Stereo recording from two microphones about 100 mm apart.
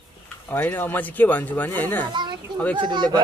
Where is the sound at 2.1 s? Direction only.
50° right (ahead or behind).